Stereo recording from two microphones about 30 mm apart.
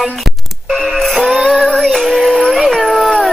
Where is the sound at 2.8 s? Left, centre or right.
Left.